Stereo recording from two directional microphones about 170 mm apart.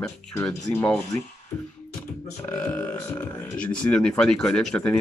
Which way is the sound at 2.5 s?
10° left (ahead or behind).